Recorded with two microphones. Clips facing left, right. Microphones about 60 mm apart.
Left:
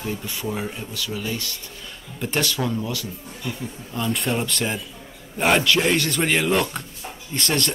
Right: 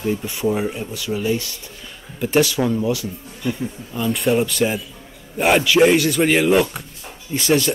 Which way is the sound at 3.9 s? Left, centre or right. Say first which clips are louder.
Right 5 dB; centre.